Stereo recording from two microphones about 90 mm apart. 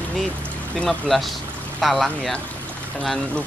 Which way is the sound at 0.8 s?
Centre (ahead or behind).